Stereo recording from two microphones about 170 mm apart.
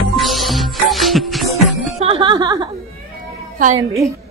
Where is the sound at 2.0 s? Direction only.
30° right (ahead or behind).